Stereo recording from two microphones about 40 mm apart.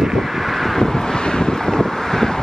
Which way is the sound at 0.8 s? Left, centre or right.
Centre.